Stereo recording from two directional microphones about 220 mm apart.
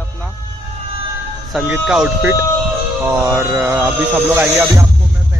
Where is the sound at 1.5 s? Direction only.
5° right (ahead or behind).